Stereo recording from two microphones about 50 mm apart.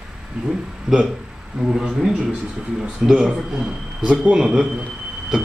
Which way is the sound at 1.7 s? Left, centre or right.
Centre.